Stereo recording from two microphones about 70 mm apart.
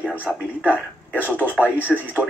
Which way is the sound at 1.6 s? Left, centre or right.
Right.